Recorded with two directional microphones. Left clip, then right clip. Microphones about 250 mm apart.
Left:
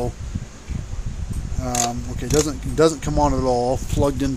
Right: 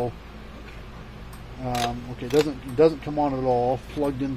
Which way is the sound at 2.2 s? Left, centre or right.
Left.